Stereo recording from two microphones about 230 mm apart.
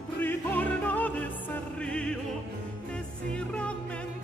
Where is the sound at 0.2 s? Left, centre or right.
Centre.